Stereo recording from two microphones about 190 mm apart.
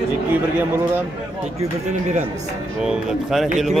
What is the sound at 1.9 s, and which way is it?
Speech, 40° right (ahead or behind).